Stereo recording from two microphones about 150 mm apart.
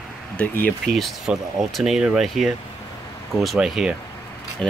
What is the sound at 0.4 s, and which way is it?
Speech, 10° left (ahead or behind).